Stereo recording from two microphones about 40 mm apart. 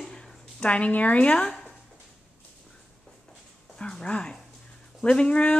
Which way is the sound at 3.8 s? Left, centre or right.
Left.